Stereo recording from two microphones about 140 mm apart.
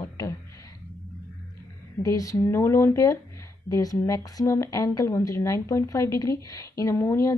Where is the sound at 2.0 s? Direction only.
25° left (ahead or behind).